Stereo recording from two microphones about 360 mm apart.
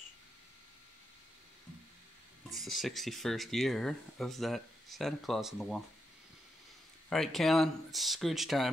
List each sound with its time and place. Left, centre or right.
2.5 s speech: centre
7.1 s speech: centre